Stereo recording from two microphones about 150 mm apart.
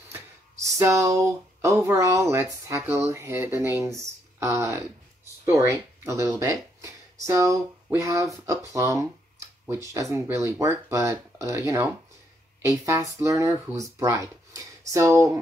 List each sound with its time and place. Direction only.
0.1 s speech: 20° right (ahead or behind)
4.0 s a sound: 20° right (ahead or behind)
5.4 s speech: 20° right (ahead or behind)